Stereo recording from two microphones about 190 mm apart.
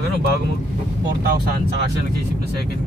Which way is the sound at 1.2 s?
55° right (ahead or behind).